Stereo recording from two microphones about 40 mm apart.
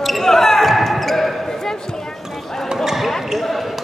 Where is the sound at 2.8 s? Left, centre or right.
Centre.